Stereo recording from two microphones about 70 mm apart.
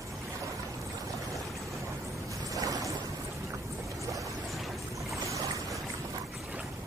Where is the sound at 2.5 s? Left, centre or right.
Right.